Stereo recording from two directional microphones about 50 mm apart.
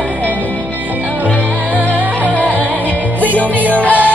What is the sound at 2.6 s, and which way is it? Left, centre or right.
Music, right.